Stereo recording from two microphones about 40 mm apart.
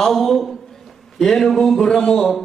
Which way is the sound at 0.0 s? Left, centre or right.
Centre.